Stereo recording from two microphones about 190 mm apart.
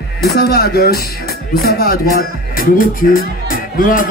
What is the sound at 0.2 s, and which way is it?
Speech, 55° left (ahead or behind).